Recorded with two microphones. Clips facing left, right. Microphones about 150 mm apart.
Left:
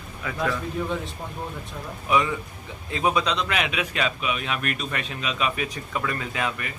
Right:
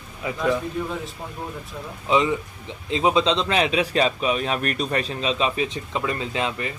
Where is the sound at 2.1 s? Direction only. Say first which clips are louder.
Right 3 dB; 20° right (ahead or behind).